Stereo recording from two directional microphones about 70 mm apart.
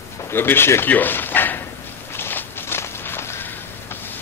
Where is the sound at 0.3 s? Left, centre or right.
Left.